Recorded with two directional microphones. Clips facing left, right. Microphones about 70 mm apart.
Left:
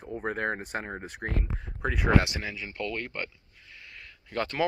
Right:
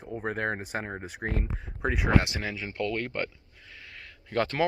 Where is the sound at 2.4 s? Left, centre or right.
Right.